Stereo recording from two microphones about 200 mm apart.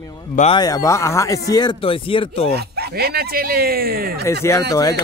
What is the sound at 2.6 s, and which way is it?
Speech, 50° right (ahead or behind).